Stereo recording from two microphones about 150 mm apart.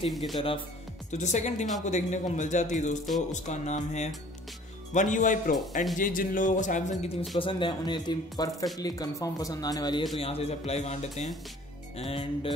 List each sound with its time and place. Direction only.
0.4 s speech: 35° left (ahead or behind)
1.1 s a man's voice: 50° left (ahead or behind)
7.3 s speech: 35° left (ahead or behind)
10.1 s a man's voice: 40° left (ahead or behind)